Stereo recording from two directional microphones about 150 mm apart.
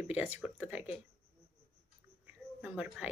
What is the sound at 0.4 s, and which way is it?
Speech, 10° right (ahead or behind).